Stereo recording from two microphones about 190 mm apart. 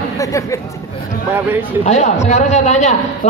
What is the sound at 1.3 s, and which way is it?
Speech, 10° right (ahead or behind).